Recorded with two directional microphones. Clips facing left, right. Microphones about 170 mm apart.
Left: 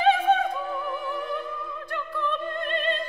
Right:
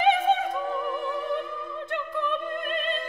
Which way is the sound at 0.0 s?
20° right (ahead or behind).